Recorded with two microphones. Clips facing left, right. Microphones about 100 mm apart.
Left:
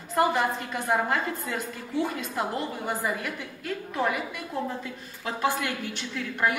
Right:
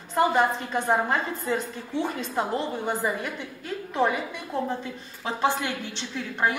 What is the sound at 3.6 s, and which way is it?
Speech, 25° right (ahead or behind).